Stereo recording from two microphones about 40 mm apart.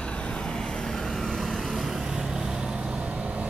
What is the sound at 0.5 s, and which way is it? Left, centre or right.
Vehicle, centre.